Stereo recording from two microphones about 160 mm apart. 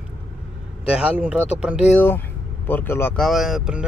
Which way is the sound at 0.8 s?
5° right (ahead or behind).